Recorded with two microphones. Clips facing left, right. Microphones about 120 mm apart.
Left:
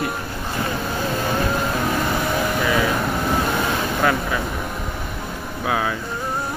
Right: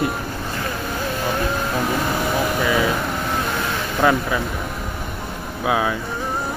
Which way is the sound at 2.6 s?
5° right (ahead or behind).